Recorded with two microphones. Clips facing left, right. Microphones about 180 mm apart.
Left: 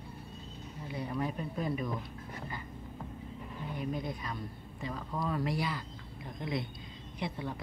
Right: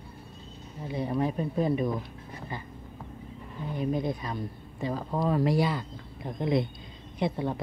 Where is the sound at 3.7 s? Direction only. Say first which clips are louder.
Right 8 dB; 30° right (ahead or behind).